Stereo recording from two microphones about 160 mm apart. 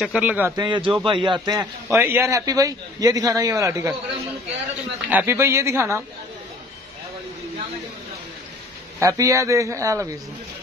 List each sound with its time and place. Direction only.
0.0 s a man's voice: 5° right (ahead or behind)
0.6 s a man's voice: 30° right (ahead or behind)
5.1 s a man's voice: 15° right (ahead or behind)
9.0 s a man's voice: 20° right (ahead or behind)